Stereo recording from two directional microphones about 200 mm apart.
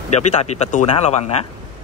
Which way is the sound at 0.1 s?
35° left (ahead or behind).